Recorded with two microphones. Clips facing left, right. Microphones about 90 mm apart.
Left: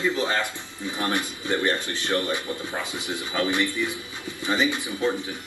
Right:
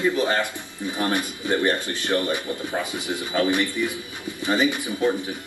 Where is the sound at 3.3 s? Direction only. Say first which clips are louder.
Right 3 dB; 20° right (ahead or behind).